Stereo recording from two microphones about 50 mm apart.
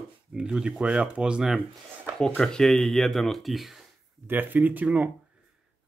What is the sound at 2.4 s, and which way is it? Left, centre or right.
Speech, centre.